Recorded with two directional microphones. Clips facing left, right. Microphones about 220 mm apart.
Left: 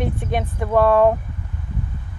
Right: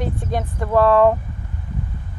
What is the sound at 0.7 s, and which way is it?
Speech, 15° left (ahead or behind).